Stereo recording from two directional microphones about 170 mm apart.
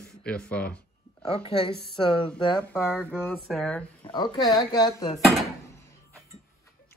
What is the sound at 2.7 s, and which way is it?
Speech, 10° left (ahead or behind).